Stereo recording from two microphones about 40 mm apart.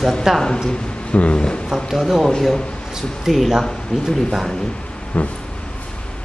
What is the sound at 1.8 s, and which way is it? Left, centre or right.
Speech, centre.